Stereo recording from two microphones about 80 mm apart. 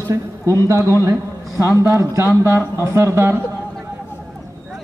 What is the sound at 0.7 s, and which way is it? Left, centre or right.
Speech, right.